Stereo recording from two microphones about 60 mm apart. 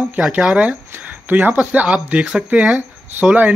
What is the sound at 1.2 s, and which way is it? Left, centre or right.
Speech, right.